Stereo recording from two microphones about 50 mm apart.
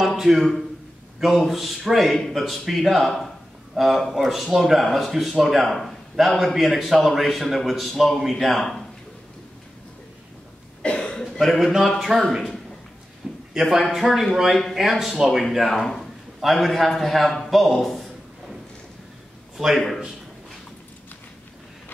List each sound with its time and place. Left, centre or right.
0.0 s a sound: centre
1.2 s a man's voice: centre
2.1 s speech: centre
2.4 s a man's voice: centre
10.8 s cough: left
11.1 s a sound: centre
12.0 s a man's voice: centre
15.4 s a man's voice: centre
19.5 s a man's voice: centre